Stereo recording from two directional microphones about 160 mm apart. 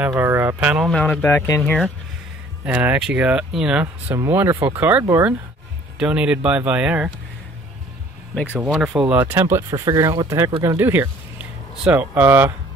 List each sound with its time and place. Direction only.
0.2 s speech: 15° right (ahead or behind)
0.8 s speech: 5° left (ahead or behind)
2.6 s speech: 10° right (ahead or behind)
8.5 s speech: centre (ahead or behind)
9.1 s speech: 15° right (ahead or behind)